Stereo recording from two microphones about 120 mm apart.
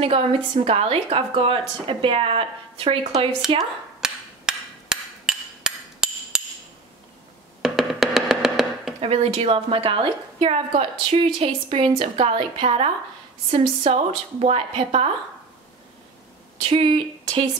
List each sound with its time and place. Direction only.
0.0 s a woman's voice: 55° right (ahead or behind)
3.4 s speech: 5° right (ahead or behind)
4.0 s hammer: 5° right (ahead or behind)
7.6 s music: 5° right (ahead or behind)
9.0 s a woman's voice: 55° right (ahead or behind)
16.7 s a woman's voice: 50° right (ahead or behind)